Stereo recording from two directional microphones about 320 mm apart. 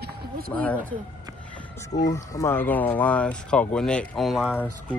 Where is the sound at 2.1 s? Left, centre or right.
Centre.